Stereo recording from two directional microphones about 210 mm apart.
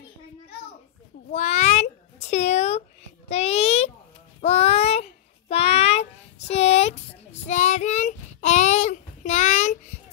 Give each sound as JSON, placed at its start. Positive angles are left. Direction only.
{"t": 1.3, "sound": "meow", "side_deg": 30}
{"t": 3.3, "sound": "a sound", "side_deg": 30}
{"t": 4.4, "sound": "child singing", "side_deg": 30}